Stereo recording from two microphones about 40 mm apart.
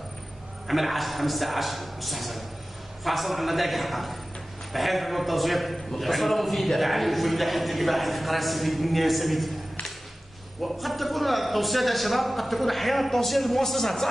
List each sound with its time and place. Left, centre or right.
0.7 s a man's voice: centre
10.6 s a man's voice: centre